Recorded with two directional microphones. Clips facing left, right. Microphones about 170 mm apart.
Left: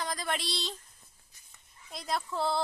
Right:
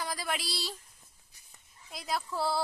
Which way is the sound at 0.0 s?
5° right (ahead or behind).